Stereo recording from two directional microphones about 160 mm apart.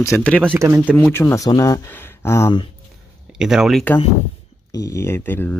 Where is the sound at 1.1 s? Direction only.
20° left (ahead or behind).